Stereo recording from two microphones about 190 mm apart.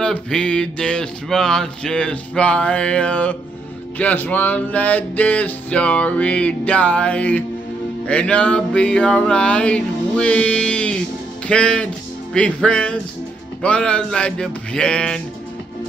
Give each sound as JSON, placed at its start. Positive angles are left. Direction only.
{"t": 0.0, "sound": "speech", "side_deg": 5}
{"t": 4.0, "sound": "a sound", "side_deg": 10}
{"t": 8.1, "sound": "speech", "side_deg": 5}